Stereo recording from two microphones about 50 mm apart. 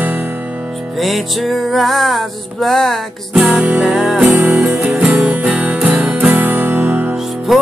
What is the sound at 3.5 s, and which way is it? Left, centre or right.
Music, right.